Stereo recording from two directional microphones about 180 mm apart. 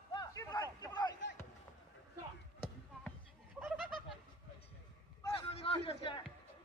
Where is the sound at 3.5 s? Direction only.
Centre (ahead or behind).